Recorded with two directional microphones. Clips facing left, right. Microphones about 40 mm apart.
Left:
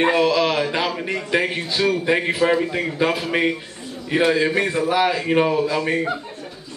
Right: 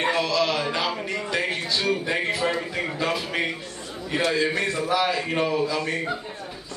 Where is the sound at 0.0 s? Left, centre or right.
Left.